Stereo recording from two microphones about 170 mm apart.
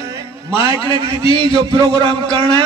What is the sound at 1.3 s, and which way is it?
Speech, 30° left (ahead or behind).